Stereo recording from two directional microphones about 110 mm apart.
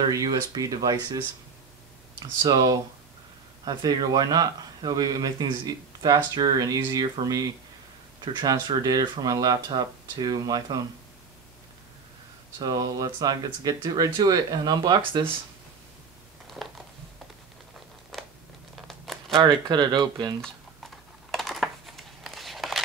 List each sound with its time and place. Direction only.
0.1 s speech: 35° right (ahead or behind)
12.5 s speech: 35° right (ahead or behind)
16.4 s a sound: centre (ahead or behind)
18.1 s a sound: 5° left (ahead or behind)
18.8 s crumpling: centre (ahead or behind)
19.3 s speech: 40° right (ahead or behind)
20.4 s typing: centre (ahead or behind)